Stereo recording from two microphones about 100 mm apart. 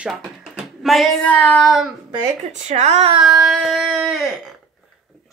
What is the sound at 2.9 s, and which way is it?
Child singing, 75° right (ahead or behind).